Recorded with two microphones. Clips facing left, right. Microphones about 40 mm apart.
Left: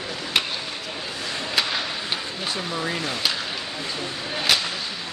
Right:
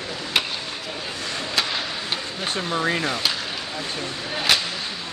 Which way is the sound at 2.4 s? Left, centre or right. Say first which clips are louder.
Right 6 dB; right.